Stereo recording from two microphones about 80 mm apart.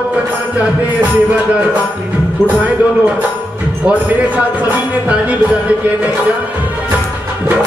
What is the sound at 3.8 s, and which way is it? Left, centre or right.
A man's voice, centre.